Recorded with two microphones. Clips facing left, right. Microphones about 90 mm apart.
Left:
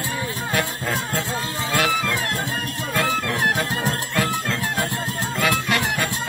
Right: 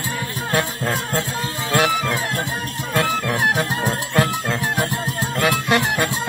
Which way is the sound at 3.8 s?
20° right (ahead or behind).